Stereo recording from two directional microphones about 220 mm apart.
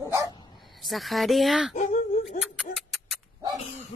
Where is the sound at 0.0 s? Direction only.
15° right (ahead or behind).